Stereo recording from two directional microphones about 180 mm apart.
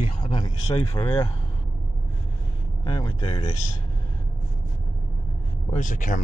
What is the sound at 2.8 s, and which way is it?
Speech, 25° left (ahead or behind).